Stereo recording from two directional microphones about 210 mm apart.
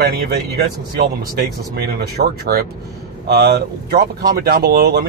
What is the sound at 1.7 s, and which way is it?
Speech, 50° right (ahead or behind).